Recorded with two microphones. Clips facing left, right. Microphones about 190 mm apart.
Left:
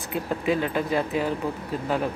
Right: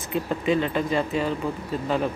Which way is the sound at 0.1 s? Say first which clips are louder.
Right 2 dB; 5° left (ahead or behind).